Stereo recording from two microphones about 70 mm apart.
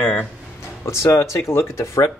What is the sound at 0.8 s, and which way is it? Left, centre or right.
Speech, left.